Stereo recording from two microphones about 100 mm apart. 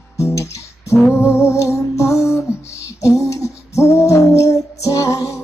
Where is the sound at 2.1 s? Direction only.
Centre (ahead or behind).